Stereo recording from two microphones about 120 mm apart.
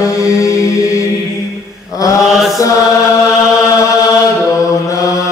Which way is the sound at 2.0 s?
30° left (ahead or behind).